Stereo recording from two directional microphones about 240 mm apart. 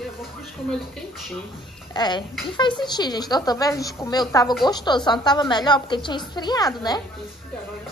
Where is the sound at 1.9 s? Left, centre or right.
Centre.